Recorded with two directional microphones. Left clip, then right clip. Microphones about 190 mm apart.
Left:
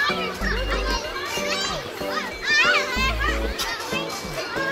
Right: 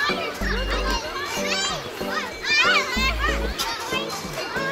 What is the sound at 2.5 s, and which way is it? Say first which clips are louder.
Children playing: even; 40° right (ahead or behind).